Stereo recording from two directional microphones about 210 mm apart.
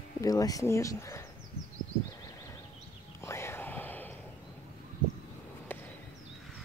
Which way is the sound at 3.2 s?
10° left (ahead or behind).